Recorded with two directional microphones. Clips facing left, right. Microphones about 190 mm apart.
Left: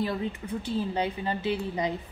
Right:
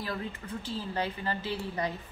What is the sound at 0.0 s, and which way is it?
A woman's voice, 20° left (ahead or behind).